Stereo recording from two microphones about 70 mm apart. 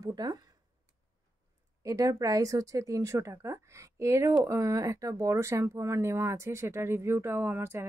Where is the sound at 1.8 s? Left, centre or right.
Right.